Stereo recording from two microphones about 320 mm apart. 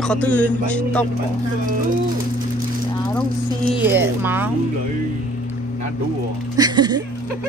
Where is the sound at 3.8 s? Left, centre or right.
Centre.